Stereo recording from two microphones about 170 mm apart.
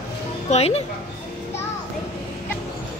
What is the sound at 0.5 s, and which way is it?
Speech, 40° left (ahead or behind).